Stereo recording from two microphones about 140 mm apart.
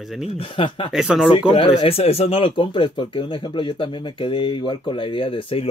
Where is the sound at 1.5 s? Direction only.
45° left (ahead or behind).